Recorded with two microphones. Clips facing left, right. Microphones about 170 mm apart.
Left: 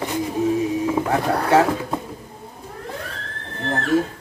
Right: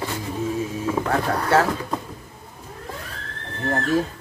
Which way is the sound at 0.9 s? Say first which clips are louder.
Left 2 dB; 15° left (ahead or behind).